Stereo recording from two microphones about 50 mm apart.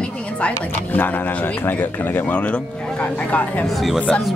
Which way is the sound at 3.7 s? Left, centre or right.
Centre.